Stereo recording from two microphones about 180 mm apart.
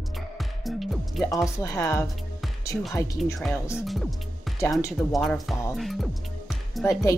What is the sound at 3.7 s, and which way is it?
Speech, centre (ahead or behind).